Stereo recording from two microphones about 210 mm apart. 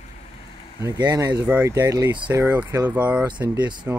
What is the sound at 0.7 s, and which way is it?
Speech, 15° right (ahead or behind).